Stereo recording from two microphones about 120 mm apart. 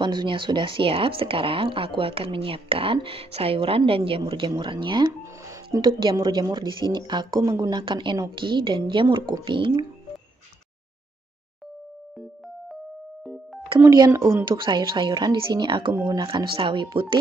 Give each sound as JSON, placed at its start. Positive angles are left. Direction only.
{"t": 0.0, "sound": "speech", "side_deg": -40}
{"t": 5.5, "sound": "speech", "side_deg": -30}
{"t": 7.8, "sound": "speech", "side_deg": -40}
{"t": 13.8, "sound": "speech", "side_deg": -30}